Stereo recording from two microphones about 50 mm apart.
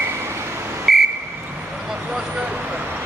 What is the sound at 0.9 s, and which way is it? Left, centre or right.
Whistle, centre.